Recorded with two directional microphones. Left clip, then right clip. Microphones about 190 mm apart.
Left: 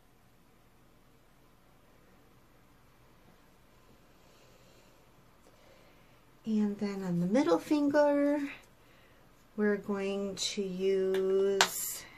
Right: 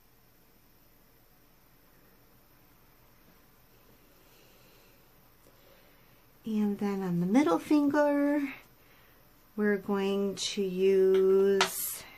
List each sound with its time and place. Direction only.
6.5 s speech: 55° right (ahead or behind)
9.6 s speech: 50° right (ahead or behind)